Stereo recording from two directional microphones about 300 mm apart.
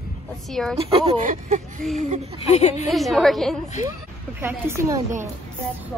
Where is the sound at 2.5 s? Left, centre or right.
Left.